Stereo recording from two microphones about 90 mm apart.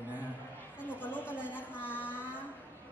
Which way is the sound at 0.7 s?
20° left (ahead or behind).